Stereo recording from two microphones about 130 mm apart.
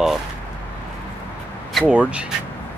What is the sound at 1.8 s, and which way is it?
Speech, 5° right (ahead or behind).